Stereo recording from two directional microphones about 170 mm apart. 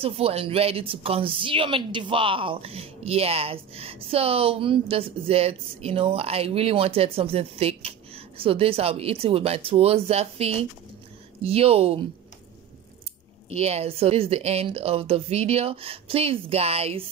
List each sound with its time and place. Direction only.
0.0 s a woman's voice: 35° right (ahead or behind)
13.5 s a woman's voice: 40° right (ahead or behind)